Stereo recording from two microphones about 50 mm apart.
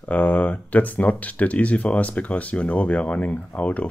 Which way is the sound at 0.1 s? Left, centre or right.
Left.